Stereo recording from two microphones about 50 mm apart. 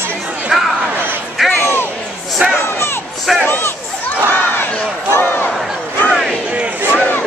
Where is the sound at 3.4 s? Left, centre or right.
Left.